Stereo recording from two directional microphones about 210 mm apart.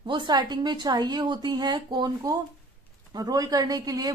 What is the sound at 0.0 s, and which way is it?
A woman's voice, 20° right (ahead or behind).